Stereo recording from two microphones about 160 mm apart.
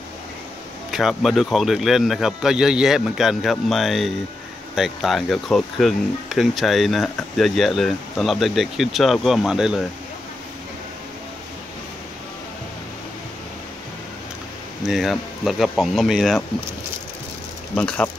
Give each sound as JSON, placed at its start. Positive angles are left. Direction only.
{"t": 0.9, "sound": "speech", "side_deg": 0}
{"t": 14.9, "sound": "speech", "side_deg": 0}
{"t": 17.7, "sound": "speech", "side_deg": 10}